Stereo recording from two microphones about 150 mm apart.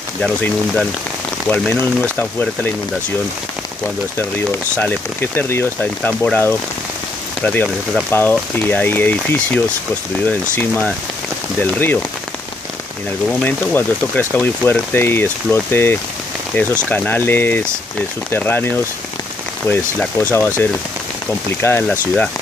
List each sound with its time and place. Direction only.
0.2 s speech: centre (ahead or behind)
1.7 s speech: 15° left (ahead or behind)
4.2 s speech: 10° left (ahead or behind)
11.6 s speech: 10° left (ahead or behind)
13.3 s speech: 10° left (ahead or behind)
19.7 s speech: 15° left (ahead or behind)
21.5 s speech: 15° left (ahead or behind)